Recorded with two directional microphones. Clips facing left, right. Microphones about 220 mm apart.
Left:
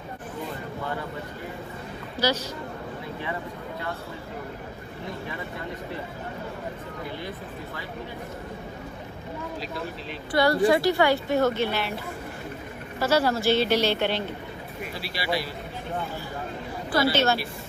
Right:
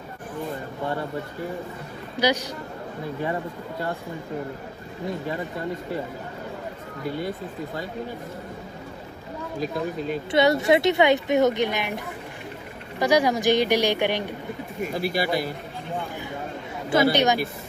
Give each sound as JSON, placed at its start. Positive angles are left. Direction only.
{"t": 2.1, "sound": "speech", "side_deg": -15}
{"t": 10.3, "sound": "speech", "side_deg": -20}
{"t": 13.0, "sound": "a woman's voice", "side_deg": -15}
{"t": 14.8, "sound": "speech", "side_deg": -45}
{"t": 16.9, "sound": "a woman's voice", "side_deg": -15}